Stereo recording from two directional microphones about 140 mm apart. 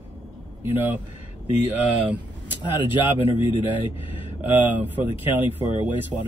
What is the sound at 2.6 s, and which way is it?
Speech, 35° left (ahead or behind).